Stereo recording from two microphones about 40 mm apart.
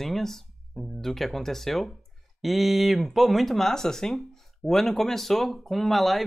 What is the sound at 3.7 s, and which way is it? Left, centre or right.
Speech, centre.